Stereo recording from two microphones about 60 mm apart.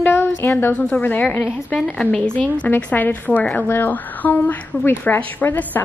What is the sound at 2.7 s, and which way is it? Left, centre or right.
A woman's voice, left.